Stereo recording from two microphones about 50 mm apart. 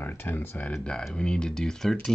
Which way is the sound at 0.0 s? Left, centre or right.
Left.